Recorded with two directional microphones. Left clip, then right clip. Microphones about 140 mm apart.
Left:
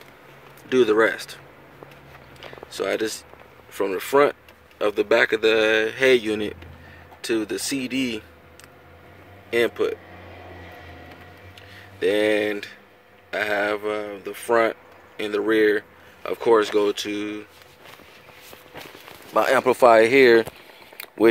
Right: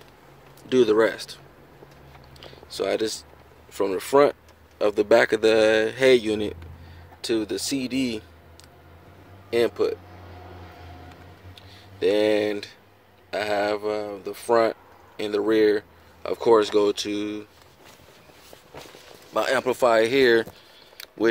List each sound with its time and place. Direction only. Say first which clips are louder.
0.7 s speech: left 1 dB; 10° right (ahead or behind)
2.8 s speech: even; 10° right (ahead or behind)
4.9 s speech: right 1 dB; 40° right (ahead or behind)
6.2 s speech: even; 15° right (ahead or behind)
9.5 s speech: left 1 dB; 10° right (ahead or behind)
12.0 s speech: even; 15° right (ahead or behind)
19.3 s speech: left 4 dB; 25° left (ahead or behind)